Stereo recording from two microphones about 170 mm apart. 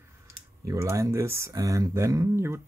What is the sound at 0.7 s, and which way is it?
Speech, 15° right (ahead or behind).